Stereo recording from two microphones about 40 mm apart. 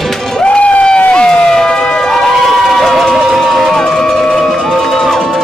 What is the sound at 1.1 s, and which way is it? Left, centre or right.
Emergency vehicle, left.